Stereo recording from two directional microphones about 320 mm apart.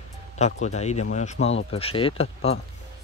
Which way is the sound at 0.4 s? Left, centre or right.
Left.